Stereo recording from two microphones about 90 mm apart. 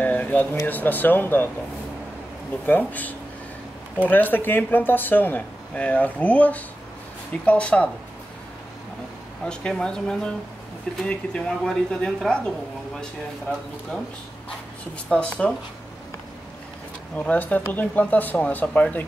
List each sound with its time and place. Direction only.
0.0 s a sound: 20° left (ahead or behind)
0.7 s speech: 20° left (ahead or behind)
2.6 s speech: 20° left (ahead or behind)
9.4 s speech: 10° left (ahead or behind)
15.0 s speech: 15° left (ahead or behind)
17.1 s speech: 15° left (ahead or behind)